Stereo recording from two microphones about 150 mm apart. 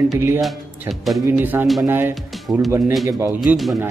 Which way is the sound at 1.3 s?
15° right (ahead or behind).